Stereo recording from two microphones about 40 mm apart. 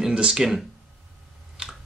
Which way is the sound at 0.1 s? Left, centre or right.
Right.